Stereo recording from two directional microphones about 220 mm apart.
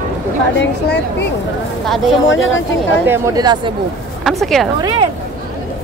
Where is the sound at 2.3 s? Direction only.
60° left (ahead or behind).